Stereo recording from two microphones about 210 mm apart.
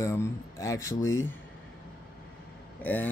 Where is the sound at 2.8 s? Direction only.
10° left (ahead or behind).